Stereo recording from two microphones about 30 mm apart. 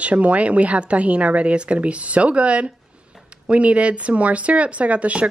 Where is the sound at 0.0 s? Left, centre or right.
Right.